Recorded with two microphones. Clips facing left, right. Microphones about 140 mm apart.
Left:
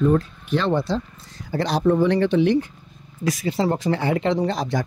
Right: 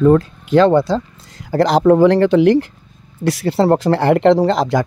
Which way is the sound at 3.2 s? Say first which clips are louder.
Right 8 dB; 70° right (ahead or behind).